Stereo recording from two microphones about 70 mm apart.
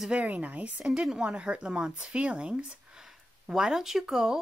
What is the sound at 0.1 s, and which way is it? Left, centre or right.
Speech, centre.